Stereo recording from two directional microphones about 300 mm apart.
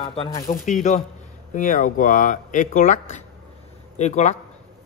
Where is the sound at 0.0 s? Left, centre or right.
Centre.